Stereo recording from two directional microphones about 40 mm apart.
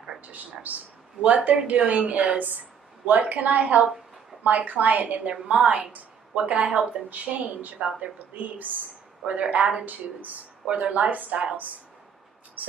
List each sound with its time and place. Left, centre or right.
0.3 s a woman's voice: right
7.1 s a woman's voice: right
9.2 s a woman's voice: right
9.8 s a woman's voice: right